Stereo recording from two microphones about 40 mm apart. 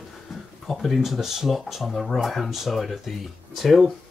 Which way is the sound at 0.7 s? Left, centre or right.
Centre.